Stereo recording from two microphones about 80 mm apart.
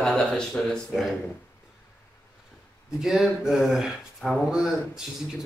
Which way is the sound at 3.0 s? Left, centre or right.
Centre.